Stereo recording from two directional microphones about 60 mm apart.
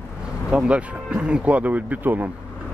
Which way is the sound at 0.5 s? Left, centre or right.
Centre.